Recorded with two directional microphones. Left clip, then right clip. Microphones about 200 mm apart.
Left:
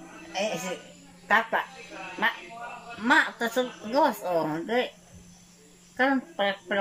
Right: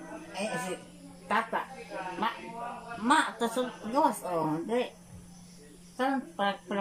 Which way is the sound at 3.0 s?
20° right (ahead or behind).